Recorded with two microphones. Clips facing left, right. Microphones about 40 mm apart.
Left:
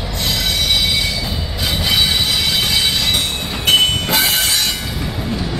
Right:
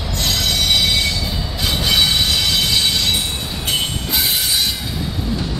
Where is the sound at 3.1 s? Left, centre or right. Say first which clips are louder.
Left 3 dB; left.